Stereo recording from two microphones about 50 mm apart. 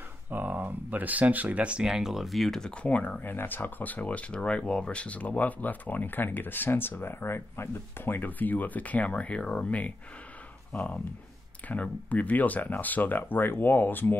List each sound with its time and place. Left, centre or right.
0.3 s speech: right
1.9 s speech: centre
2.8 s speech: left